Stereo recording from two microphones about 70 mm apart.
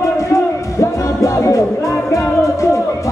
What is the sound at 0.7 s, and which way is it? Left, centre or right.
Music, left.